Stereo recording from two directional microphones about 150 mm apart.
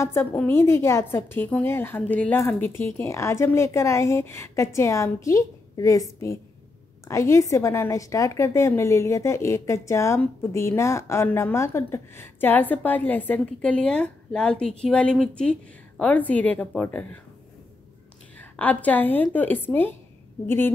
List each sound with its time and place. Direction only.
0.0 s a woman's voice: 15° left (ahead or behind)
18.4 s a woman's voice: 10° left (ahead or behind)